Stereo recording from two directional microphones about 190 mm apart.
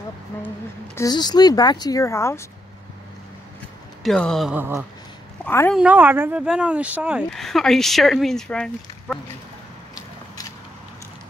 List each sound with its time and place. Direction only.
0.9 s speech: 20° left (ahead or behind)
4.0 s speech: 5° left (ahead or behind)
5.4 s a woman's voice: 10° left (ahead or behind)
5.8 s speech: 10° right (ahead or behind)